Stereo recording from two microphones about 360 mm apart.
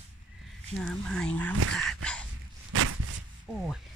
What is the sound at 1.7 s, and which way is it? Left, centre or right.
Dog, centre.